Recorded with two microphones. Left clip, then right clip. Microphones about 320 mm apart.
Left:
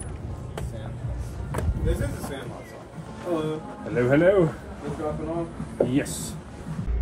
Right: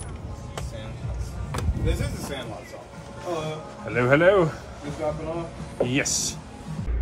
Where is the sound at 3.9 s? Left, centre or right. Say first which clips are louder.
Right 1 dB; right.